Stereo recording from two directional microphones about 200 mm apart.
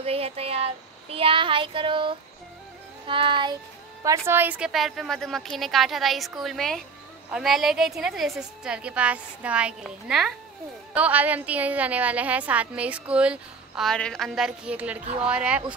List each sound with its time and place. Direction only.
0.0 s child singing: 30° right (ahead or behind)
4.3 s a woman's voice: 10° right (ahead or behind)